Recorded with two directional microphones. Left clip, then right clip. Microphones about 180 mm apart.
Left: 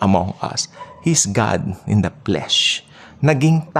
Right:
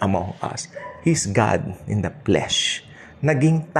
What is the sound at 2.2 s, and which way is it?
Speech, 10° left (ahead or behind).